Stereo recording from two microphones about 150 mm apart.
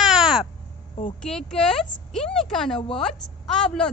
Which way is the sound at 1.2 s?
5° left (ahead or behind).